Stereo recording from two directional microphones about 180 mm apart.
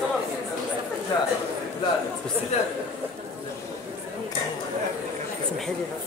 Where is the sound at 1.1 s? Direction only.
20° left (ahead or behind).